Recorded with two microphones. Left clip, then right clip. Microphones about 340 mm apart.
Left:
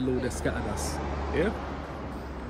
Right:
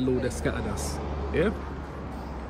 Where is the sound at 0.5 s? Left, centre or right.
Left.